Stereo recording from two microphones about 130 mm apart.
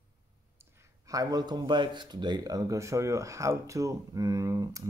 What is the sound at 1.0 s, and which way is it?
Speech, 25° right (ahead or behind).